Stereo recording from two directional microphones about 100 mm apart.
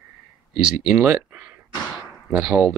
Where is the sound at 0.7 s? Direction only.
10° right (ahead or behind).